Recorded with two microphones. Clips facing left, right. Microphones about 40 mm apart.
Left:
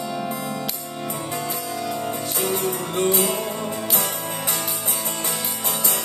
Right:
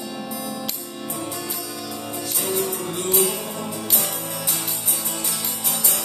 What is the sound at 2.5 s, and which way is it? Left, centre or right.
Music, left.